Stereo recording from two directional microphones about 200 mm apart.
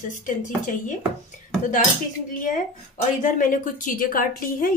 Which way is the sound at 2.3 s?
40° left (ahead or behind).